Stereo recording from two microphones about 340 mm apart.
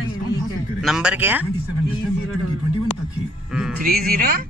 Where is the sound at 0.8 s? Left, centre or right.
Centre.